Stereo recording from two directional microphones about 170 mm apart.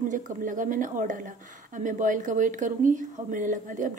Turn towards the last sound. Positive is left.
turn(degrees=-50)  # may be behind; listen again after turning